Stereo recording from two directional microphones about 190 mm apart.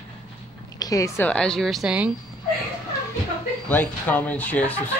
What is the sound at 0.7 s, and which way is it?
Speech, 20° left (ahead or behind).